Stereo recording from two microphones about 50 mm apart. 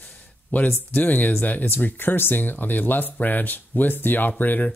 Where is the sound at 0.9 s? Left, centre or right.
Left.